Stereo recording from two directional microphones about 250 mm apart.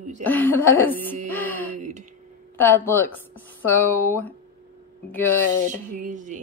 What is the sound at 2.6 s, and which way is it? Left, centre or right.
Speech, centre.